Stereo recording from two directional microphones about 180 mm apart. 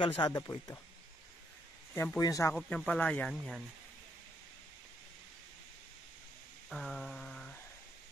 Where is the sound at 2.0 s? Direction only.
15° left (ahead or behind).